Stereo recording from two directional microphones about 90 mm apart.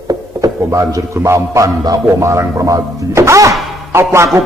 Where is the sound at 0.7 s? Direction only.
35° right (ahead or behind).